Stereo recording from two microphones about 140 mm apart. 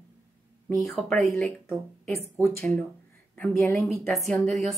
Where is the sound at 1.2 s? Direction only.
10° left (ahead or behind).